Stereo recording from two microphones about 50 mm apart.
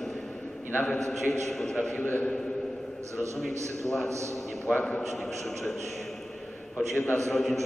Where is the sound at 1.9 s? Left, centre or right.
Left.